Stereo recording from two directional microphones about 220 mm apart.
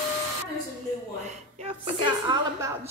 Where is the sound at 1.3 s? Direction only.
30° right (ahead or behind).